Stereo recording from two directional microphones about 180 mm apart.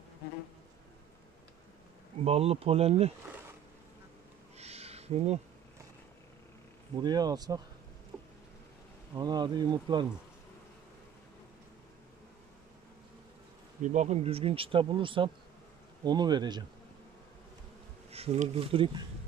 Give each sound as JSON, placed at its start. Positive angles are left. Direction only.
{"t": 2.2, "sound": "speech", "side_deg": -35}
{"t": 4.6, "sound": "a sound", "side_deg": -35}
{"t": 7.0, "sound": "speech", "side_deg": -20}
{"t": 8.1, "sound": "a sound", "side_deg": -5}
{"t": 9.1, "sound": "speech", "side_deg": -25}
{"t": 13.8, "sound": "speech", "side_deg": -40}
{"t": 18.1, "sound": "speech", "side_deg": -35}